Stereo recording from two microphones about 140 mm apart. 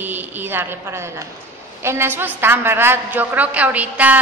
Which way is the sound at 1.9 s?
15° right (ahead or behind).